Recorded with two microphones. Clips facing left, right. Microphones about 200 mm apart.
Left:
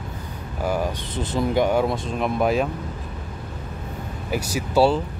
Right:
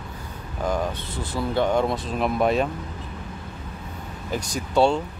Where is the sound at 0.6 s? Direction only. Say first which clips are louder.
Left 1 dB; 10° left (ahead or behind).